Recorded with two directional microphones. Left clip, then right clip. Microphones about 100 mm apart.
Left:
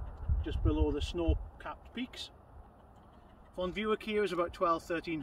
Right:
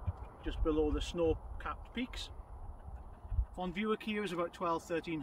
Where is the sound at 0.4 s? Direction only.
20° right (ahead or behind).